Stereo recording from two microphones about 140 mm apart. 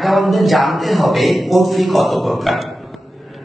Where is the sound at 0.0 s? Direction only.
Centre (ahead or behind).